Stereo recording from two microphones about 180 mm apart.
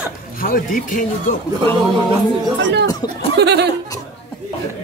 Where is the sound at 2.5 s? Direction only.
80° right.